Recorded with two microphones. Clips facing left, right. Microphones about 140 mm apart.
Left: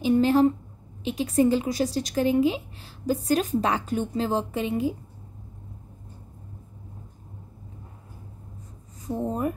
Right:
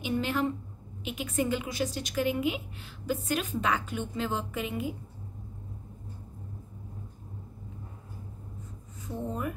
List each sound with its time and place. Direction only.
0.0 s speech: 35° left (ahead or behind)
9.0 s speech: 35° left (ahead or behind)